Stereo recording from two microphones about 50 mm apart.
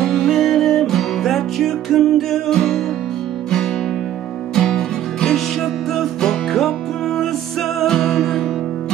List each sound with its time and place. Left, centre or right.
0.0 s music: centre
4.6 s music: centre
7.8 s music: centre